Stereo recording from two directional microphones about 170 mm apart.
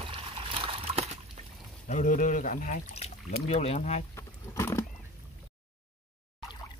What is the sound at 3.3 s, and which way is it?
Speech, 40° left (ahead or behind).